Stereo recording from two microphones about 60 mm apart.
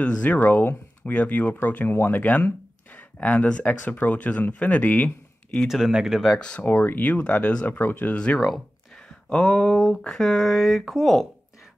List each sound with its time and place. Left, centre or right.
0.0 s speech: left
5.7 s speech: centre
6.6 s speech: left
8.4 s a sound: centre
9.3 s speech: centre
9.8 s speech: centre